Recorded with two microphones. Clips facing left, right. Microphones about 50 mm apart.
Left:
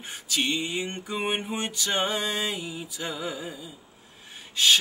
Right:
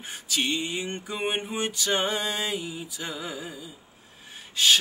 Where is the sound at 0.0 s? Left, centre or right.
Centre.